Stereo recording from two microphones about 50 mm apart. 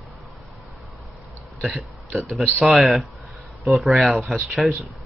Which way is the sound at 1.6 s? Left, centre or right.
Centre.